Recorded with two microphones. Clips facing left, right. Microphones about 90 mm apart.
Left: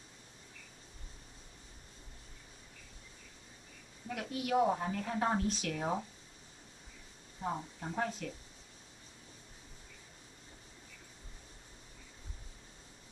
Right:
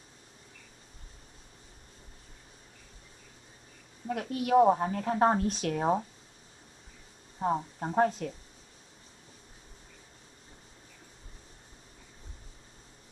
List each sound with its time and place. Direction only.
4.1 s a woman's voice: 40° right (ahead or behind)
7.3 s a woman's voice: 50° right (ahead or behind)